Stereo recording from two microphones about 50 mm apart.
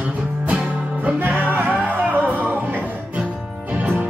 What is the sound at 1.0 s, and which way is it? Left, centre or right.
Music, right.